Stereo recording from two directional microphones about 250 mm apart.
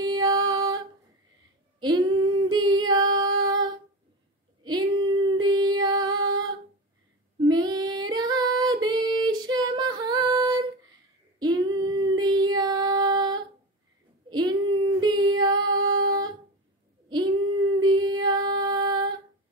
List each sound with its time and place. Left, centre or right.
0.0 s music: centre
1.8 s female singing: centre
4.6 s female singing: centre
14.3 s child singing: centre
16.1 s humming: centre
17.1 s female singing: centre